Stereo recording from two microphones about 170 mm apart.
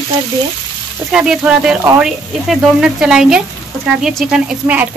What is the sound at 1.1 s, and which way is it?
Speech, 5° right (ahead or behind).